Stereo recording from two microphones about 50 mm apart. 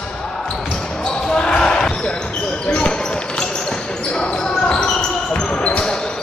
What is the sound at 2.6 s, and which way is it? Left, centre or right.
Basketball bounce, left.